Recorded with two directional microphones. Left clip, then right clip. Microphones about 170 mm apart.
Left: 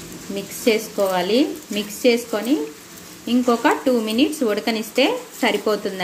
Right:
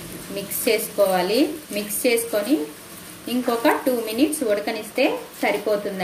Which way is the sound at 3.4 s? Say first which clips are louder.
Left 1 dB; 50° left (ahead or behind).